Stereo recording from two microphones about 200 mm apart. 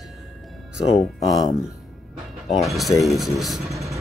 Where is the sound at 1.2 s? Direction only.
20° left (ahead or behind).